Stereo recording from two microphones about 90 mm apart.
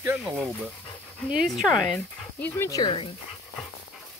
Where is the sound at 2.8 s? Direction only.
70° left (ahead or behind).